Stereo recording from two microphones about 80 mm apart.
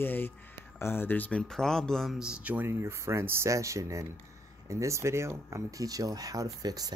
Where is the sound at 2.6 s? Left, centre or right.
Right.